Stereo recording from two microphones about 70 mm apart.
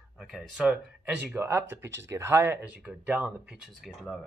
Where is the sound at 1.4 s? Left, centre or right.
Right.